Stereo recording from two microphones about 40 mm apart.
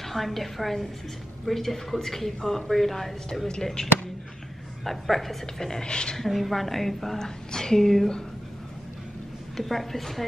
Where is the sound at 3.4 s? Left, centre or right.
Centre.